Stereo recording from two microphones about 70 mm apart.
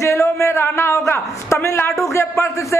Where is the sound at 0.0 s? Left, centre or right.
Left.